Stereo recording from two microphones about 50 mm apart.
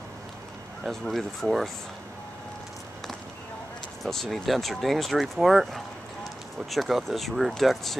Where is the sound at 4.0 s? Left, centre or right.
Centre.